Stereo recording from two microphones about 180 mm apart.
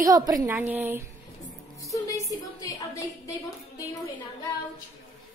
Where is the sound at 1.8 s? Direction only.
20° left (ahead or behind).